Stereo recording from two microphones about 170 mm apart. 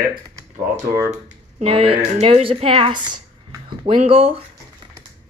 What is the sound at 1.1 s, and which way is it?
A woman's voice, 35° right (ahead or behind).